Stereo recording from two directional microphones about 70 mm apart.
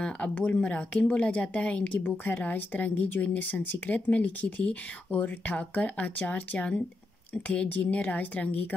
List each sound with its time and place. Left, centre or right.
0.0 s speech: centre